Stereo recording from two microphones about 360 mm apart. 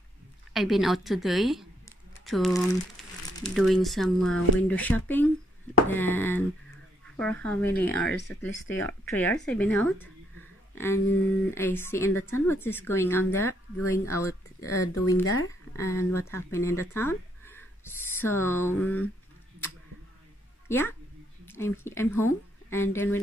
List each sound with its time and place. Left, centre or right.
0.5 s speech: centre
10.7 s a sound: centre
11.5 s a woman's voice: centre
12.1 s speech: left
12.4 s a woman's voice: centre
14.7 s speech: left
15.7 s a woman's voice: centre
20.6 s a woman's voice: centre